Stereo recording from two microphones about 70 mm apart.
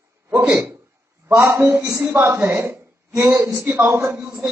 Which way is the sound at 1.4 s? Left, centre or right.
Right.